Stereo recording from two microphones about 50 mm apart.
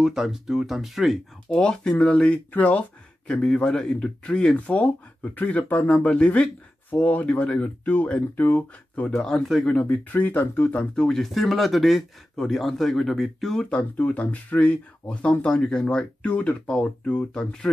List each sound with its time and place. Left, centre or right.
0.0 s speech: centre
1.5 s speech: centre
3.3 s speech: centre
6.9 s speech: left
9.1 s speech: centre
9.8 s speech: left
10.4 s speech: left
10.7 s speech: left
11.1 s speech: centre
13.7 s speech: left
15.4 s speech: centre
16.3 s speech: left; by 17.6 s centre